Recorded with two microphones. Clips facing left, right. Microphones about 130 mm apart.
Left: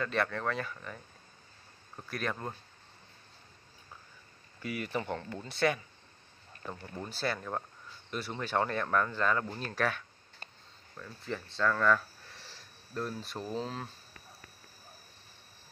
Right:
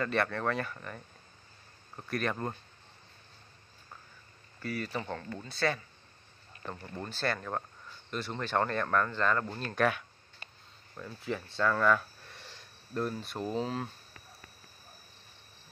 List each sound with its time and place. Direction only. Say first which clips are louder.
0.0 s speech: right 2 dB; centre (ahead or behind)
2.0 s speech: right 3 dB; centre (ahead or behind)
4.6 s speech: left 1 dB; 15° left (ahead or behind)
6.7 s speech: right 1 dB; 5° left (ahead or behind)